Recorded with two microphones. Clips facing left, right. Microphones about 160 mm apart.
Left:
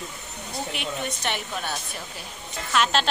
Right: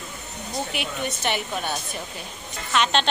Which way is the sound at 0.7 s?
5° right (ahead or behind).